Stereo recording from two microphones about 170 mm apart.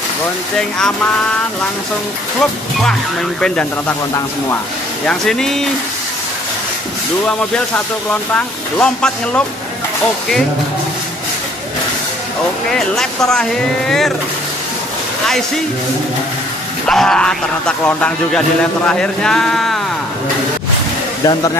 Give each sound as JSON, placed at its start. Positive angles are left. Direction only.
{"t": 0.6, "sound": "speech", "side_deg": 5}
{"t": 2.8, "sound": "speech", "side_deg": 5}
{"t": 5.0, "sound": "speech", "side_deg": 5}
{"t": 7.2, "sound": "speech", "side_deg": 10}
{"t": 12.6, "sound": "speech", "side_deg": 0}
{"t": 16.8, "sound": "speech", "side_deg": 5}